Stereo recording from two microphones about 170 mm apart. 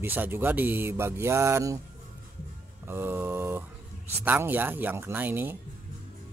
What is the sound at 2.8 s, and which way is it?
Speech, 15° right (ahead or behind).